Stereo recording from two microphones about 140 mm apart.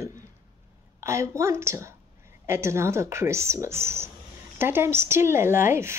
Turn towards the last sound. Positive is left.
turn(degrees=-20)  # may be behind; listen again after turning